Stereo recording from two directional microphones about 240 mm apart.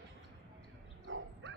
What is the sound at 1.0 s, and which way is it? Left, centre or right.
Bow-wow, right.